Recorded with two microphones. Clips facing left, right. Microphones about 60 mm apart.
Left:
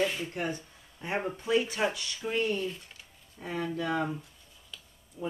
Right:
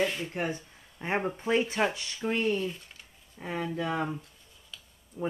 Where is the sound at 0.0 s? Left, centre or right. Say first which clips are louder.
Even; centre.